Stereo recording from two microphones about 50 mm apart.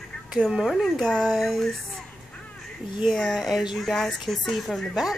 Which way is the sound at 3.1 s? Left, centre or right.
Centre.